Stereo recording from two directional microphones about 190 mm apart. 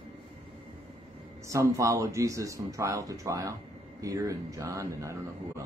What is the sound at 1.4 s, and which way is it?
Speech, 15° right (ahead or behind).